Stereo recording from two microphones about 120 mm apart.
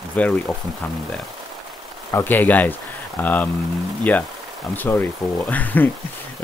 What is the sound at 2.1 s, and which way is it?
Speech, 15° left (ahead or behind).